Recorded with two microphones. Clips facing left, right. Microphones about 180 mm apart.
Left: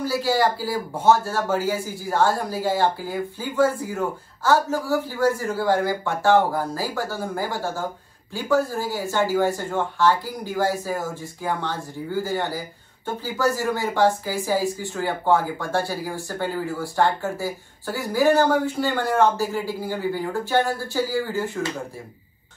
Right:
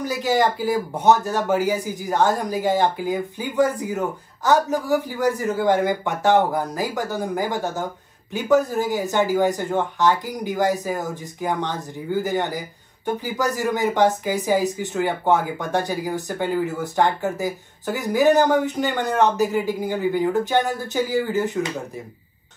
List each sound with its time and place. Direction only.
0.0 s speech: 20° right (ahead or behind)